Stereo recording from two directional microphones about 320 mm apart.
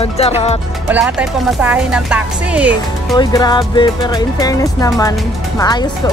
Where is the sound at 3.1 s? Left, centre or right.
Centre.